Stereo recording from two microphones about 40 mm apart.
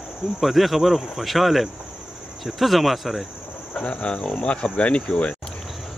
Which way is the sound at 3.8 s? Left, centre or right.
Left.